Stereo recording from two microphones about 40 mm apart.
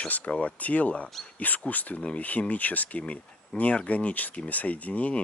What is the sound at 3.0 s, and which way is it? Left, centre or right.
Speech, left.